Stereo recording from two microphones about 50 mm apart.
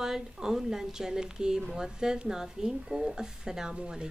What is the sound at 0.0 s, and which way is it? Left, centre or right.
Speech, centre.